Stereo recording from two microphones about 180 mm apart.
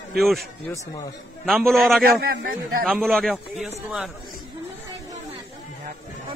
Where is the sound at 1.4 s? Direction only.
Centre (ahead or behind).